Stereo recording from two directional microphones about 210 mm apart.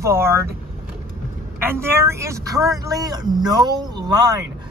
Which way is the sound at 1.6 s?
10° right (ahead or behind).